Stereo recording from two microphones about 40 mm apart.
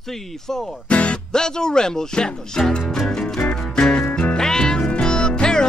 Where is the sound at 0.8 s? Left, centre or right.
Left.